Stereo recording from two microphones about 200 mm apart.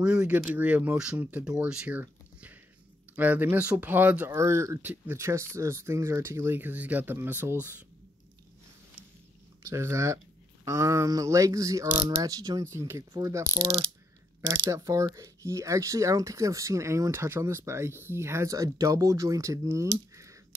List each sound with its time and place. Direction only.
0.0 s speech: 5° right (ahead or behind)
9.6 s speech: 15° right (ahead or behind)
12.2 s mechanisms: 20° right (ahead or behind)
12.7 s speech: 10° right (ahead or behind)